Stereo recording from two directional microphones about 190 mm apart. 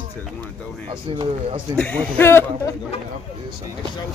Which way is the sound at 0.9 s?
25° right (ahead or behind).